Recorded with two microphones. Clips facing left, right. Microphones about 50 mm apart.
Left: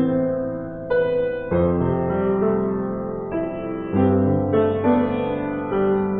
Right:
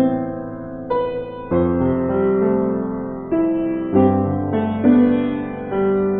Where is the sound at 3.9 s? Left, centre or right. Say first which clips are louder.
Right 1 dB; centre.